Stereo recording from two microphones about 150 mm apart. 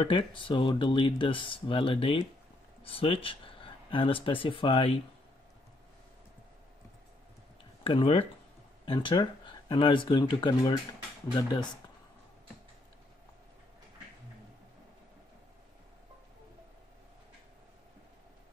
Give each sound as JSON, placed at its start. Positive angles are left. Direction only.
{"t": 0.0, "sound": "speech", "side_deg": 35}
{"t": 7.8, "sound": "speech", "side_deg": 40}